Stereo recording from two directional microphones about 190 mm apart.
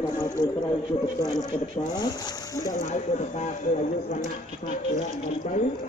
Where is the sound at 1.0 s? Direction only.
20° left (ahead or behind).